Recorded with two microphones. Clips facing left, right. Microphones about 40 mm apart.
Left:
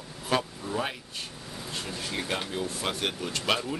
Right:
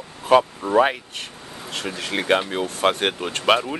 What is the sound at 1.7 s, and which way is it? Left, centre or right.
Speech, right.